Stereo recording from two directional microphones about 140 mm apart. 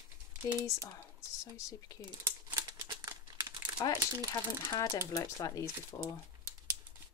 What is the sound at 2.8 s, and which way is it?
Crumpling, 25° right (ahead or behind).